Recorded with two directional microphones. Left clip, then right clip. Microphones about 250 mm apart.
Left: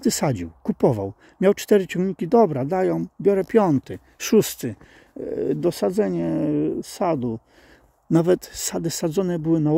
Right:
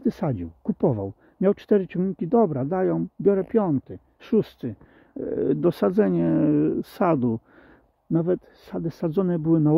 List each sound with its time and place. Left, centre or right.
0.0 s speech: centre
3.3 s speech: centre
5.2 s speech: centre
8.1 s speech: centre